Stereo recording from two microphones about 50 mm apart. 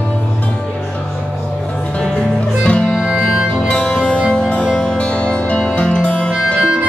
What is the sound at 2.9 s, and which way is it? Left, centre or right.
Music, centre.